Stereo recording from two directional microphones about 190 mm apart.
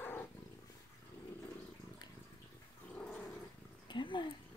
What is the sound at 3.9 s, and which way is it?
Cat, 25° left (ahead or behind).